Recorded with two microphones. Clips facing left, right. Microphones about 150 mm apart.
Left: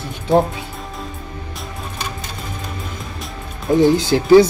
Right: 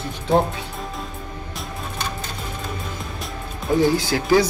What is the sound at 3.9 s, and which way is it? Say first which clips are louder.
Speech: left 7 dB; 25° left (ahead or behind).